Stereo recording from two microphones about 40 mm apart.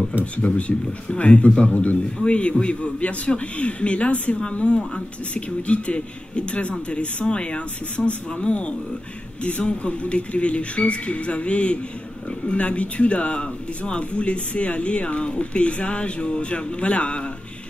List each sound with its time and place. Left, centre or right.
0.2 s a man's voice: left